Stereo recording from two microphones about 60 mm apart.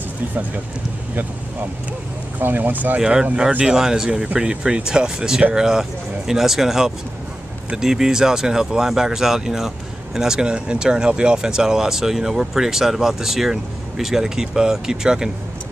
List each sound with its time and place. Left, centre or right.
2.3 s speech: right
3.0 s speech: centre